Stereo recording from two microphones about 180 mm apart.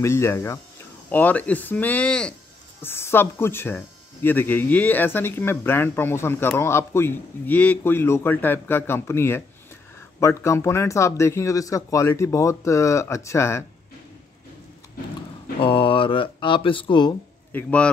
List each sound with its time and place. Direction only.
0.0 s speech: 15° left (ahead or behind)
15.6 s speech: 30° left (ahead or behind)
17.5 s speech: 10° left (ahead or behind)